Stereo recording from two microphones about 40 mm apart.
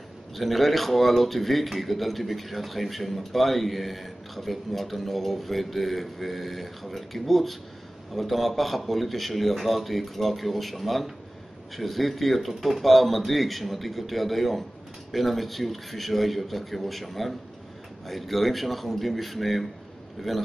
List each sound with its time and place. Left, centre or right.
0.4 s a man's voice: centre